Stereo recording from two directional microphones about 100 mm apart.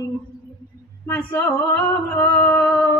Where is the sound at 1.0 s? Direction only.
25° left (ahead or behind).